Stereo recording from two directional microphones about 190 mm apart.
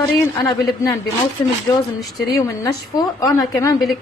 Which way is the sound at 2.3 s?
15° left (ahead or behind).